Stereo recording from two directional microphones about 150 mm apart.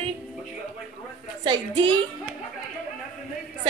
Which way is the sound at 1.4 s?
35° right (ahead or behind).